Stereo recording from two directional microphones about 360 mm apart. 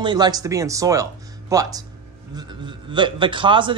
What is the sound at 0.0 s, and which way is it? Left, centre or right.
A man's voice, centre.